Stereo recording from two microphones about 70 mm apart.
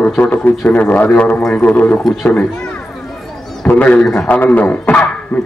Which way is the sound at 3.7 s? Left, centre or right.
Left.